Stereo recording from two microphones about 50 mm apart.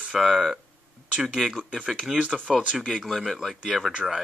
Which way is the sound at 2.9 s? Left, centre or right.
Centre.